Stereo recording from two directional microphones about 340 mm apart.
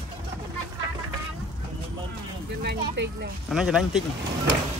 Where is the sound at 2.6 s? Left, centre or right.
Right.